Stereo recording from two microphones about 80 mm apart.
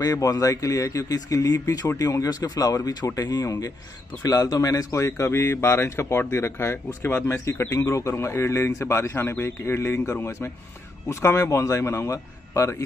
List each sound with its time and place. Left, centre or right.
0.0 s speech: left